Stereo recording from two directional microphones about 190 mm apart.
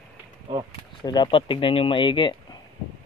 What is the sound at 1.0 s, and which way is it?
Speech, 25° left (ahead or behind).